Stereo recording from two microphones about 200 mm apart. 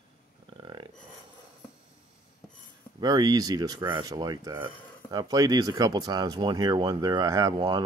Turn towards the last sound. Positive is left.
turn(degrees=-20)  # may be behind; listen again after turning